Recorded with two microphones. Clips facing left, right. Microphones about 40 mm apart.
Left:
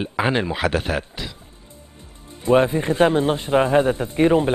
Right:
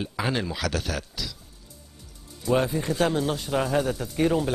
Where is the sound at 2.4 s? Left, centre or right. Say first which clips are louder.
Left 7 dB; left.